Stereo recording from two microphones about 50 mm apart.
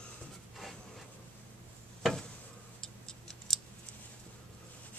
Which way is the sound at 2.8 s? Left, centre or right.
Centre.